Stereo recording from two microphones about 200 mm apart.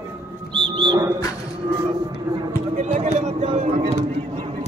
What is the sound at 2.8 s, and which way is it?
Speech, 35° right (ahead or behind).